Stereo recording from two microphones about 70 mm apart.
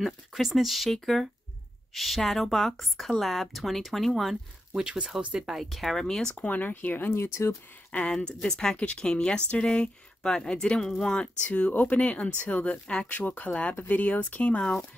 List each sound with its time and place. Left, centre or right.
0.0 s speech: centre
4.7 s speech: centre
5.4 s speech: centre
6.4 s speech: left
7.9 s speech: centre
11.4 s speech: left
13.1 s speech: left